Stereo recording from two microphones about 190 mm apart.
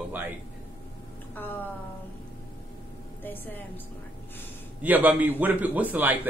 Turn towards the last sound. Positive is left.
turn(degrees=-10)  # may be behind; listen again after turning